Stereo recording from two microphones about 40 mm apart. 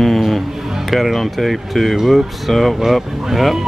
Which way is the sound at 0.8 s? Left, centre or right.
Centre.